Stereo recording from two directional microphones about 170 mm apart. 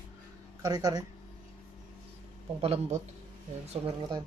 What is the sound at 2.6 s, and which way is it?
Speech, 40° right (ahead or behind).